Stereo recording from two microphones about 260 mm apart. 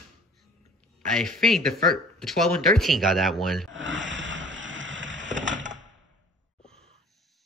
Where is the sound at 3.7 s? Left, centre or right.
Right.